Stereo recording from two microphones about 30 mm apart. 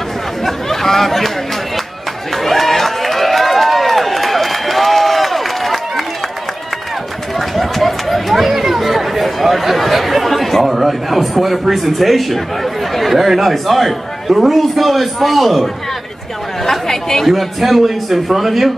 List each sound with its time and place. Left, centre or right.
0.5 s a sound: centre
2.3 s run: centre
7.3 s chatter: centre
11.7 s a man's voice: centre
16.8 s chatter: centre
17.3 s a man's voice: centre